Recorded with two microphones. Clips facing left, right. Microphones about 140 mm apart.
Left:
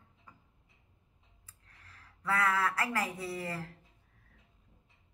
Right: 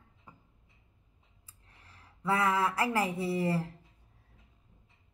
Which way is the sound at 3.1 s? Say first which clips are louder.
Right 8 dB; 25° right (ahead or behind).